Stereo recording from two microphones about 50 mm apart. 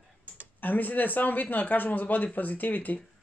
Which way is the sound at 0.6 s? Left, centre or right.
Left.